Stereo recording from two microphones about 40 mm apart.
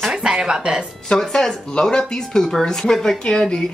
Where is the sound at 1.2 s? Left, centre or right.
Centre.